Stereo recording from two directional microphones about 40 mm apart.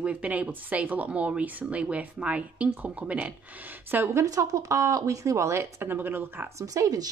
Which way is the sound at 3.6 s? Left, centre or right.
Right.